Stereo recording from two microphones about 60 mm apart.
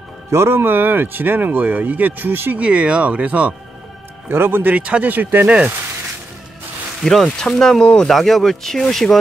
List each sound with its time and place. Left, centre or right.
0.3 s speech: right
2.6 s speech: right
4.3 s speech: right
4.7 s speech: right
7.1 s speech: centre
8.1 s speech: centre